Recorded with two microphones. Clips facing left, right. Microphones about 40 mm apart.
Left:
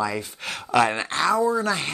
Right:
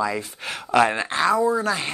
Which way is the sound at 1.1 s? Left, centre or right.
Right.